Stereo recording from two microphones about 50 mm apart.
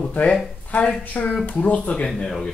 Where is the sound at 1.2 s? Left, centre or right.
Left.